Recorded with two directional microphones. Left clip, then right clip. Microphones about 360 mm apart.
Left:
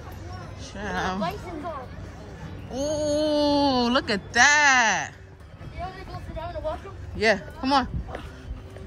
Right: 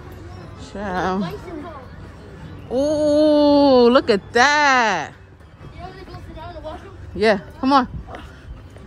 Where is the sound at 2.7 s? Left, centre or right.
Right.